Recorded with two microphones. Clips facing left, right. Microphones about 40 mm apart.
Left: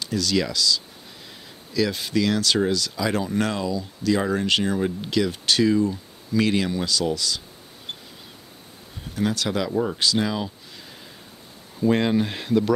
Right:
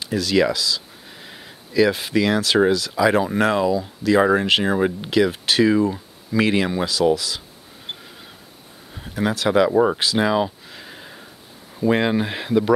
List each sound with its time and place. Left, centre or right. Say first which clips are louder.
0.0 s speech: right 5 dB; centre
9.0 s speech: right 4 dB; centre
9.9 s a sound: right 4 dB; centre
11.8 s speech: right 2 dB; centre